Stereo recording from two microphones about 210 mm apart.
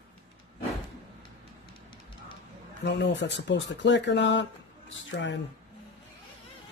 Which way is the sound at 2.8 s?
55° left (ahead or behind).